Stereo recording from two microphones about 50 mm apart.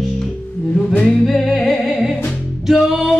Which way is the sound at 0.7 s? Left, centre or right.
Centre.